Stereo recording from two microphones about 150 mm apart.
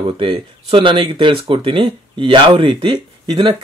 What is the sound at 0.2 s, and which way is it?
Speech, 35° right (ahead or behind).